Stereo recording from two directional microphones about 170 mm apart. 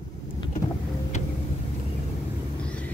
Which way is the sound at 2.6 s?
5° left (ahead or behind).